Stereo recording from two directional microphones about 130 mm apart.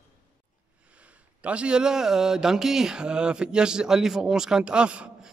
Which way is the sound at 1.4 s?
10° right (ahead or behind).